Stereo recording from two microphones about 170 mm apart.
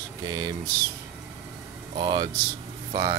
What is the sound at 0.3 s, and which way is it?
Speech, 25° right (ahead or behind).